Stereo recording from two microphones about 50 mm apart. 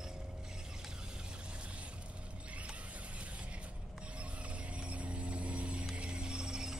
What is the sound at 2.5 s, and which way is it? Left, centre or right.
Mechanisms, right.